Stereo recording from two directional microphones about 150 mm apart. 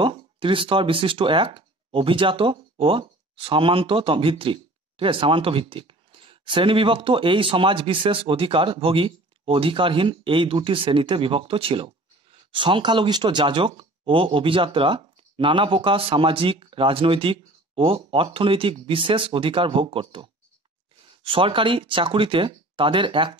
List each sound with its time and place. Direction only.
0.0 s speech: 35° right (ahead or behind)